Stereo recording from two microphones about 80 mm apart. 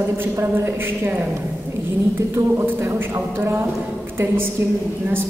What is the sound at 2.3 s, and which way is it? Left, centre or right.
A man's voice, right.